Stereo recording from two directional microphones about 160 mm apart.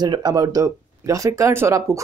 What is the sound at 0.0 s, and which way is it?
Speech, 25° right (ahead or behind).